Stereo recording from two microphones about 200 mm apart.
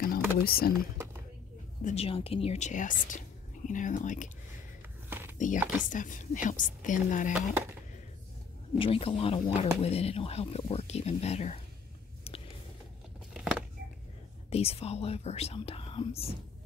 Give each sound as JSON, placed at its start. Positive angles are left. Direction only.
{"t": 0.0, "sound": "typing", "side_deg": 50}
{"t": 0.7, "sound": "whispering", "side_deg": -10}
{"t": 1.8, "sound": "speech", "side_deg": 35}
{"t": 5.9, "sound": "speech", "side_deg": 40}
{"t": 8.7, "sound": "speech", "side_deg": 25}
{"t": 12.3, "sound": "a sound", "side_deg": 30}
{"t": 13.3, "sound": "a sound", "side_deg": -5}
{"t": 14.5, "sound": "speech", "side_deg": 30}